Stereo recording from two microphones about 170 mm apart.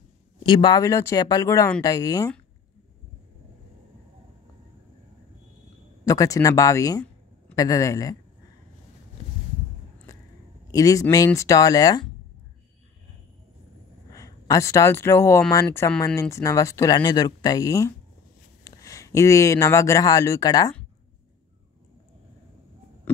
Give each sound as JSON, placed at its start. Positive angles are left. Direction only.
{"t": 0.4, "sound": "speech", "side_deg": 25}
{"t": 6.0, "sound": "speech", "side_deg": 20}
{"t": 10.7, "sound": "speech", "side_deg": 20}
{"t": 14.1, "sound": "speech", "side_deg": 20}